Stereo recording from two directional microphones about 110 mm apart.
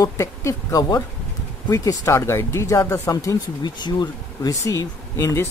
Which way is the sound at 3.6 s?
40° left (ahead or behind).